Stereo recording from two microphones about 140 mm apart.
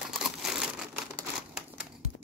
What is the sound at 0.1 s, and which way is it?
Crumpling, 5° right (ahead or behind).